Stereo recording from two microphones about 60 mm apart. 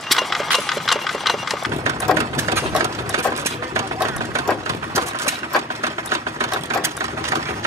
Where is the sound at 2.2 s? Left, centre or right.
Right.